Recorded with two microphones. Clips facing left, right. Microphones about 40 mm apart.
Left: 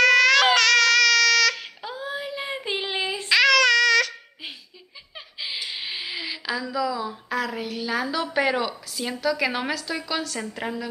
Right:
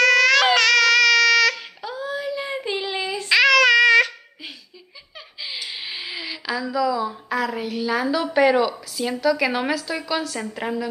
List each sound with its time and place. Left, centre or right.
0.0 s baby cry: centre
1.5 s a sound: centre
3.3 s babbling: centre
5.4 s a woman's voice: centre